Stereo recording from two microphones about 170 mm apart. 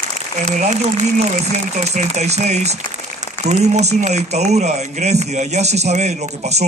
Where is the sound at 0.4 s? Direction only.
45° right (ahead or behind).